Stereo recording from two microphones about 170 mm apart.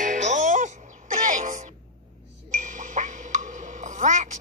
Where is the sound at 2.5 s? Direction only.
45° right (ahead or behind).